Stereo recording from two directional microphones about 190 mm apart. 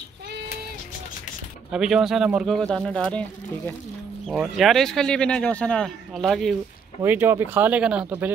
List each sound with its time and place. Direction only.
1.7 s speech: 5° right (ahead or behind)
7.0 s speech: 10° right (ahead or behind)